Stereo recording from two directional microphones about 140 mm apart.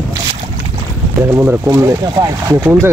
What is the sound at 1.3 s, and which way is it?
Speech, 20° right (ahead or behind).